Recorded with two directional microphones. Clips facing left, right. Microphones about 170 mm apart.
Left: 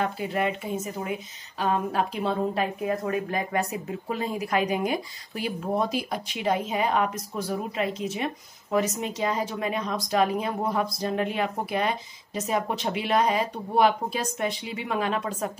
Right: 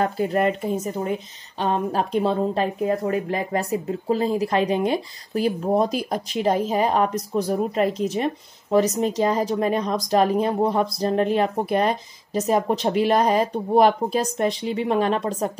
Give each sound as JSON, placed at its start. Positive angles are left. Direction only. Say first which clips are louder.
{"t": 0.0, "sound": "a woman's voice", "louder": "right 6 dB", "side_deg": -40}